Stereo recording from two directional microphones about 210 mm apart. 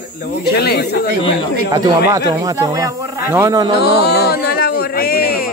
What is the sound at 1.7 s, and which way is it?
Speech, 15° right (ahead or behind).